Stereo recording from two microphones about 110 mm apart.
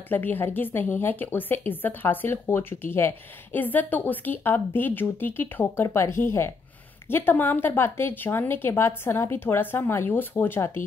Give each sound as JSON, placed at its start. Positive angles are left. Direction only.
{"t": 0.1, "sound": "speech", "side_deg": 15}